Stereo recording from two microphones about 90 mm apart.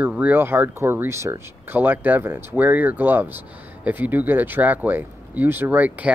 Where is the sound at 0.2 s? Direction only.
20° right (ahead or behind).